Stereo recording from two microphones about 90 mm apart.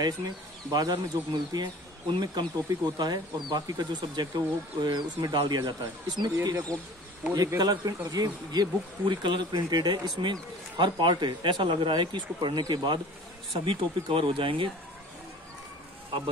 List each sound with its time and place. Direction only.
0.0 s speech: 45° right (ahead or behind)
6.4 s speech: 40° right (ahead or behind)
10.8 s speech: 65° right (ahead or behind)
13.7 s speech: 70° right (ahead or behind)